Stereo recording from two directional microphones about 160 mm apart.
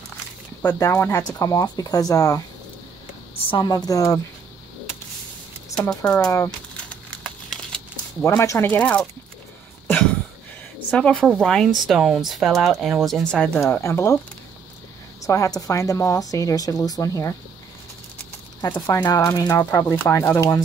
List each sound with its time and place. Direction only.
0.7 s speech: 15° left (ahead or behind)
3.4 s speech: 30° left (ahead or behind)
5.8 s speech: 5° left (ahead or behind)
6.1 s speech: 20° left (ahead or behind)
6.9 s a sound: 5° left (ahead or behind)
8.2 s speech: 20° left (ahead or behind)
10.9 s speech: 10° left (ahead or behind)
13.6 s speech: 15° left (ahead or behind)
15.2 s speech: 20° left (ahead or behind)
18.9 s speech: 20° left (ahead or behind)